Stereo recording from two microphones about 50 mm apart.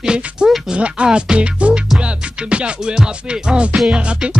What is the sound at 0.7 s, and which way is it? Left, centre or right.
Music, right.